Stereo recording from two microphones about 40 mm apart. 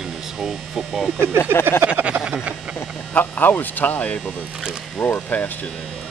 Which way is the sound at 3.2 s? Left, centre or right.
Left.